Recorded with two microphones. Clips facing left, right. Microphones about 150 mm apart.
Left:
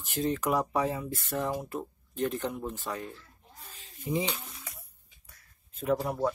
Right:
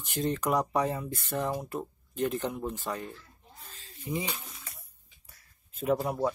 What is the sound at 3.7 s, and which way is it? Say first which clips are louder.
Snake: left 2 dB; 15° left (ahead or behind).